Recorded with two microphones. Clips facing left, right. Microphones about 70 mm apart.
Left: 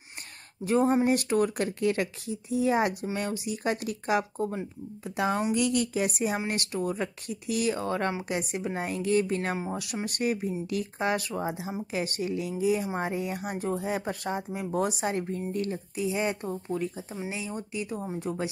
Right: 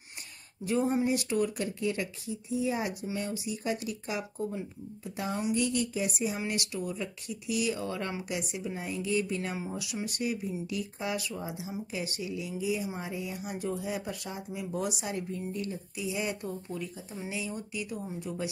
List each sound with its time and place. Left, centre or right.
0.7 s speech: left
5.1 s speech: left